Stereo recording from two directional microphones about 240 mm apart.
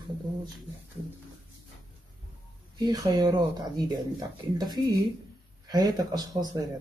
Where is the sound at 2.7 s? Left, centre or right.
Centre.